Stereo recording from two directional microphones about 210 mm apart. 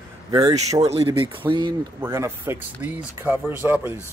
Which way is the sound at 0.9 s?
25° right (ahead or behind).